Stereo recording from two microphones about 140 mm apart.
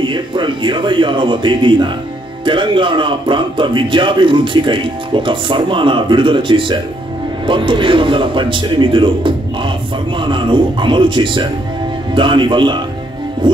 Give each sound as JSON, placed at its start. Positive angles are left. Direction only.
{"t": 0.0, "sound": "speech", "side_deg": -35}